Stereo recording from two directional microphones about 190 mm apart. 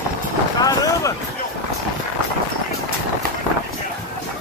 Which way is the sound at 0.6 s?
20° left (ahead or behind).